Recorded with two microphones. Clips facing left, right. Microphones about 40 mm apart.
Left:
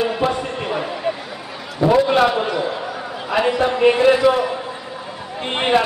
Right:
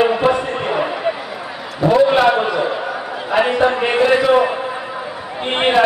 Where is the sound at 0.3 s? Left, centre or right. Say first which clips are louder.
Right 5 dB; right.